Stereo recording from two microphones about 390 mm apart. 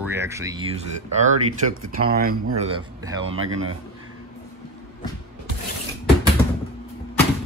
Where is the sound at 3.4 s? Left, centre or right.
Right.